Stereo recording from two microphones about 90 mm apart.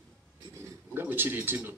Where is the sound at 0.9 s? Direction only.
25° right (ahead or behind).